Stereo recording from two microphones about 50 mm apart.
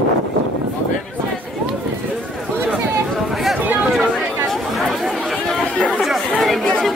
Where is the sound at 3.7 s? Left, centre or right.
Centre.